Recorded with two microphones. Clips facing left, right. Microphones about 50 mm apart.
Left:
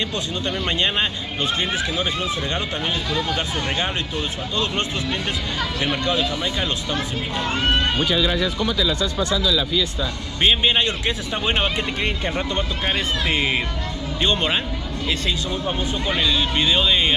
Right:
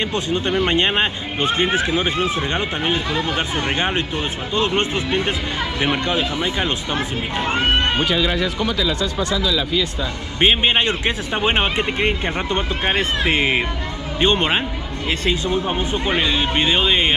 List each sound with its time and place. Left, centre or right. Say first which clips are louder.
0.3 s speech: right 6 dB; right
8.0 s speech: right 1 dB; right
10.4 s speech: right 2 dB; right